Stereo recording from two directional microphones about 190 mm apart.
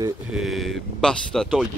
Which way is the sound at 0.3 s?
Centre (ahead or behind).